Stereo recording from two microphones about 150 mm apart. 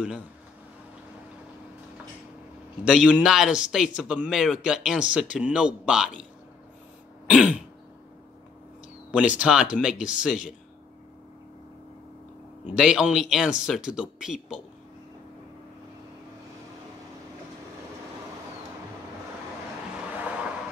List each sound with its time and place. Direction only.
2.8 s a man's voice: 5° right (ahead or behind)
7.2 s speech: 10° right (ahead or behind)
9.1 s speech: 10° right (ahead or behind)
12.6 s a man's voice: 5° right (ahead or behind)
20.2 s vehicle: 5° right (ahead or behind)